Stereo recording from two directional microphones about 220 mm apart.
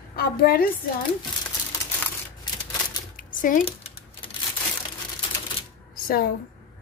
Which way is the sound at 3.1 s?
35° left (ahead or behind).